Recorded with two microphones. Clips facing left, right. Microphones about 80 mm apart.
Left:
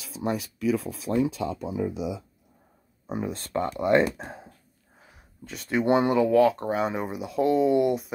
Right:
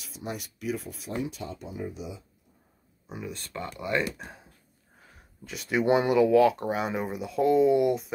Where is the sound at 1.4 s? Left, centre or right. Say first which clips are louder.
Left 8 dB; left.